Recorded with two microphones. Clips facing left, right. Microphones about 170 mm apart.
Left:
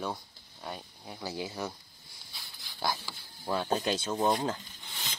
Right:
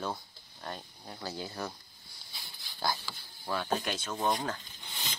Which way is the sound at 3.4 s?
25° left (ahead or behind).